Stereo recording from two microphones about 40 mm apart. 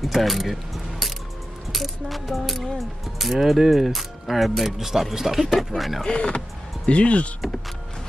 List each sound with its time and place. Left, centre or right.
0.0 s mechanisms: centre
1.7 s speech: centre
6.0 s speech: left